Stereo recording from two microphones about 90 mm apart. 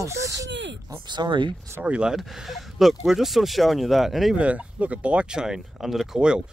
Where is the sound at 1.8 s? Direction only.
10° right (ahead or behind).